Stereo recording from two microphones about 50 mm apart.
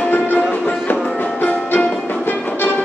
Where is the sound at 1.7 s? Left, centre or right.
Left.